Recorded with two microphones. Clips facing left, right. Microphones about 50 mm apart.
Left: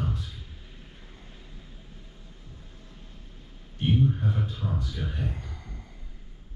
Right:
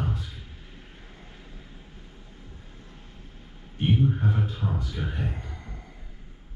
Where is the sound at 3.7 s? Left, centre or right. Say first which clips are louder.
Right 1 dB; centre.